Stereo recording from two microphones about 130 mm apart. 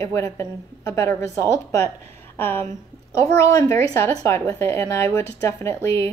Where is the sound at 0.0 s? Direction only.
20° left (ahead or behind).